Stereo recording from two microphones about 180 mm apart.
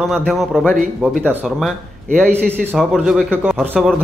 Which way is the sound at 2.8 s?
Centre (ahead or behind).